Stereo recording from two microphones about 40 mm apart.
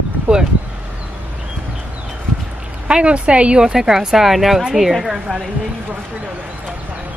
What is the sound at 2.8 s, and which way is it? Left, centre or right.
Speech, right.